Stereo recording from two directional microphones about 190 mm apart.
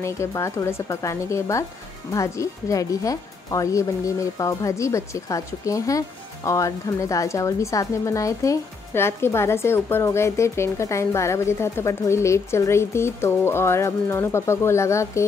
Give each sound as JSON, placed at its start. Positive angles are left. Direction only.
{"t": 0.0, "sound": "a woman's voice", "side_deg": 15}